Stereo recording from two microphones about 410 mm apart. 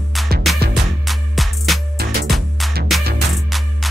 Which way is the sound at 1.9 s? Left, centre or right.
Right.